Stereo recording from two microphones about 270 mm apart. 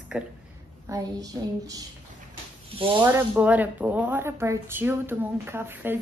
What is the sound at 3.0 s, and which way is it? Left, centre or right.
Speech, centre.